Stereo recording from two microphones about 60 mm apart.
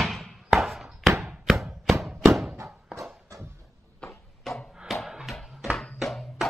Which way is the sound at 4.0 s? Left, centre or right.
Centre.